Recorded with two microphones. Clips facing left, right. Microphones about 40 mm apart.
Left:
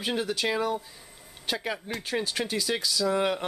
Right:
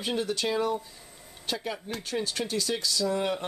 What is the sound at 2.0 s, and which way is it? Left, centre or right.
Speech, centre.